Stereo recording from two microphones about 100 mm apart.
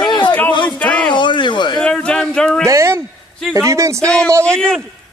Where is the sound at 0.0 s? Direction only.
50° left (ahead or behind).